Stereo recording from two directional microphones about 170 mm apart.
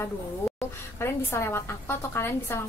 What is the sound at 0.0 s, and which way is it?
A woman's voice, 15° left (ahead or behind).